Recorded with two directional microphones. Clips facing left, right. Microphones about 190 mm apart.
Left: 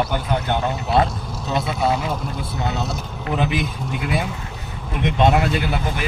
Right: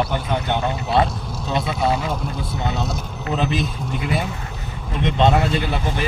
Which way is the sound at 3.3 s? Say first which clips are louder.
Even; 15° left (ahead or behind).